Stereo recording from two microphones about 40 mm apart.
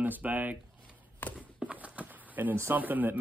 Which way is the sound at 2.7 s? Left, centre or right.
Right.